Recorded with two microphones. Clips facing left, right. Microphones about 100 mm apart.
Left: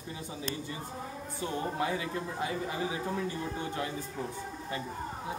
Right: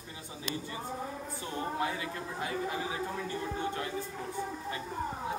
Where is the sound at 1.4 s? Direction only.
25° left (ahead or behind).